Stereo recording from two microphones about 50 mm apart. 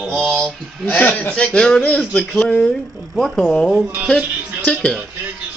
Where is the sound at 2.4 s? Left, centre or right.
Centre.